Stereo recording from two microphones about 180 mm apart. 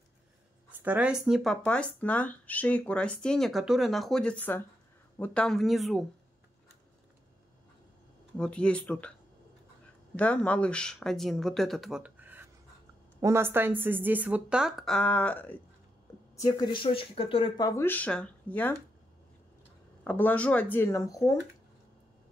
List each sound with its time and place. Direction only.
0.7 s speech: 10° right (ahead or behind)
8.4 s speech: 5° left (ahead or behind)
10.1 s a woman's voice: 5° left (ahead or behind)
16.3 s speech: 20° left (ahead or behind)
20.0 s speech: 10° left (ahead or behind)